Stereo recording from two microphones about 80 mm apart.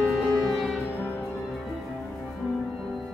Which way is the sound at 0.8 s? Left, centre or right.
Left.